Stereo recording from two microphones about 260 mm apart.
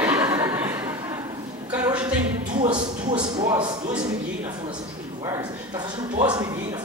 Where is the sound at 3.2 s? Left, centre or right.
Centre.